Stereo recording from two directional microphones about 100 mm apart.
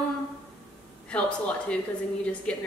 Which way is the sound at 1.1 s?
10° left (ahead or behind).